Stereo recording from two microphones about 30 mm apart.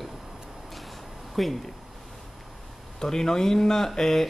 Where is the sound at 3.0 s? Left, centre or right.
Centre.